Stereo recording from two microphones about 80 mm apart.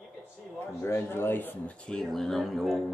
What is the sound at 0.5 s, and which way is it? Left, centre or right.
Speech, left.